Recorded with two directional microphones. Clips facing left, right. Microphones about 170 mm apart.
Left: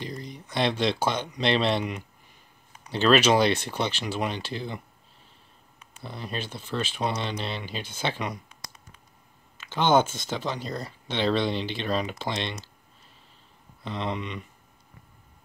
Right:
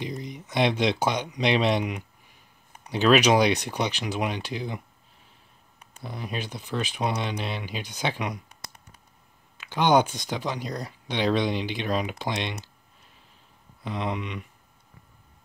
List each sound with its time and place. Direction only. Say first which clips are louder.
0.0 s speech: right 3 dB; 20° right (ahead or behind)
6.0 s speech: right 1 dB; 10° right (ahead or behind)
9.6 s speech: right 1 dB; 15° right (ahead or behind)
13.8 s speech: right 1 dB; 10° right (ahead or behind)